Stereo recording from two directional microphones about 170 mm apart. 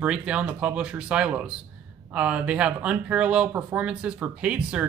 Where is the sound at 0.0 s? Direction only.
5° right (ahead or behind).